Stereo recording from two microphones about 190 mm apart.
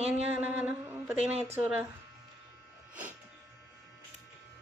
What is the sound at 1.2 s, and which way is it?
Speech, 35° right (ahead or behind).